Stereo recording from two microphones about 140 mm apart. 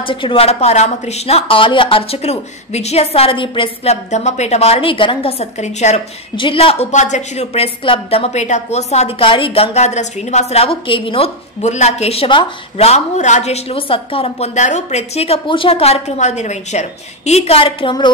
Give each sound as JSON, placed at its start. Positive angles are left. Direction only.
{"t": 0.0, "sound": "a woman's voice", "side_deg": 35}
{"t": 6.3, "sound": "a woman's voice", "side_deg": 40}